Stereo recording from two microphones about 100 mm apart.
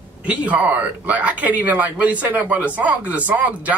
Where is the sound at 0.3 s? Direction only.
15° right (ahead or behind).